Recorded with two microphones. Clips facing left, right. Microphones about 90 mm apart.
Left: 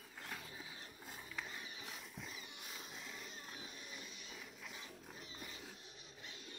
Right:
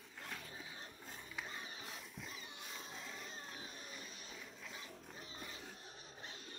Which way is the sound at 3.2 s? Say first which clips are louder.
Right 2 dB; 35° right (ahead or behind).